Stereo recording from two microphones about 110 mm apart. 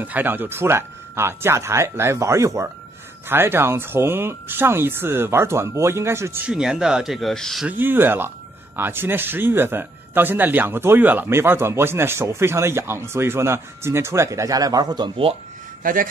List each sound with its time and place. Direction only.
0.0 s speech: 15° right (ahead or behind)
6.4 s speech: 5° right (ahead or behind)
7.6 s speech: 15° right (ahead or behind); by 15.0 s 40° right (ahead or behind)